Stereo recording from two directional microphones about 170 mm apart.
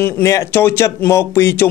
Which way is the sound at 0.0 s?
15° left (ahead or behind).